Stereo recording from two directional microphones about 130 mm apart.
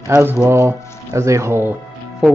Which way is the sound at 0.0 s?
20° right (ahead or behind).